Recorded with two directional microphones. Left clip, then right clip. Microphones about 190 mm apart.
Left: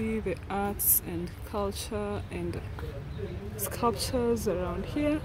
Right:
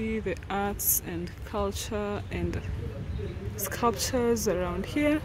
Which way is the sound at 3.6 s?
5° right (ahead or behind).